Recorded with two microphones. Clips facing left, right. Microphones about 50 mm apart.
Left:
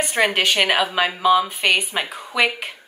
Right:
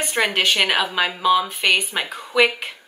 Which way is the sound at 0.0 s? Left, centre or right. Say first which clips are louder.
Left 1 dB; centre.